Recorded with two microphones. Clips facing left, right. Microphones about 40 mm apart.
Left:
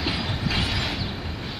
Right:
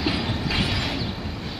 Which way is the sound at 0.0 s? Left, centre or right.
Centre.